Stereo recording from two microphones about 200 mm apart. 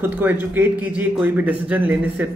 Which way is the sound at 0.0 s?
10° right (ahead or behind).